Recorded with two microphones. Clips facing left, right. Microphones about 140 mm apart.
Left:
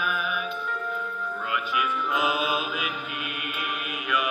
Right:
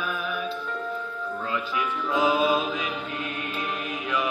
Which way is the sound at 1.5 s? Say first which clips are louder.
Left 2 dB; 30° right (ahead or behind).